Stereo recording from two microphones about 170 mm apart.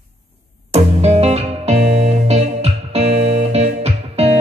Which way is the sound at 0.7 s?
40° right (ahead or behind).